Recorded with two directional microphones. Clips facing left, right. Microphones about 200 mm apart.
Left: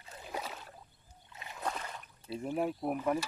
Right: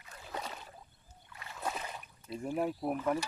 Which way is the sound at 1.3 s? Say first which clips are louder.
Left 1 dB; 20° left (ahead or behind).